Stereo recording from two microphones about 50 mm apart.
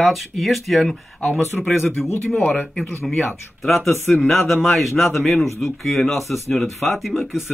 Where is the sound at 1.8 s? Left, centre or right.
Left.